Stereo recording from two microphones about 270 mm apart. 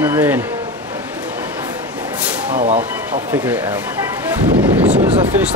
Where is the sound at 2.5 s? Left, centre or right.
Right.